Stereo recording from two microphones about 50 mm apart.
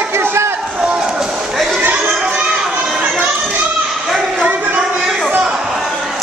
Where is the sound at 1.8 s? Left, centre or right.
Right.